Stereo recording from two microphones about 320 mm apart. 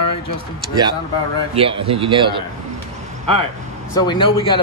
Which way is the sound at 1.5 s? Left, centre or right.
Centre.